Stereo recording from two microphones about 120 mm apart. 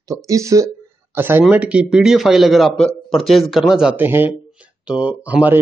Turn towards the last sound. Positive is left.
turn(degrees=-10)  # may be behind; listen again after turning